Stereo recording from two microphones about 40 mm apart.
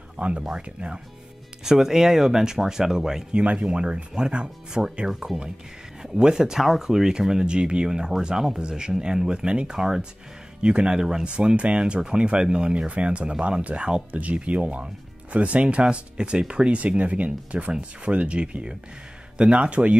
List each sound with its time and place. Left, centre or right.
0.2 s speech: right
1.6 s speech: centre
3.3 s speech: right; by 8.6 s centre
8.6 s speech: centre
9.8 s speech: centre
10.6 s speech: right
14.1 s speech: right